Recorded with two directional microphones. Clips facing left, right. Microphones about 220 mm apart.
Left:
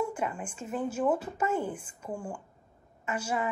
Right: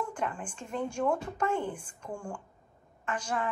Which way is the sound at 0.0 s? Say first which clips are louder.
Left 3 dB; 5° left (ahead or behind).